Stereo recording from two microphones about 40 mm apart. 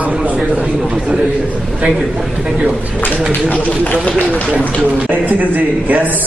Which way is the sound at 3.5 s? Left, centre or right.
Left.